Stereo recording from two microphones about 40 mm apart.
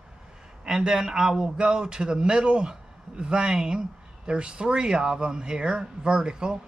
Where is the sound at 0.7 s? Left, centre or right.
Centre.